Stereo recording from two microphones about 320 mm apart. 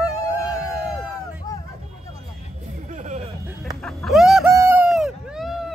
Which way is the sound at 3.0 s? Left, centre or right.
Right.